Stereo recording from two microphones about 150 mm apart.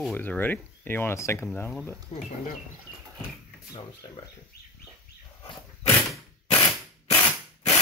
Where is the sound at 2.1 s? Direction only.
45° left (ahead or behind).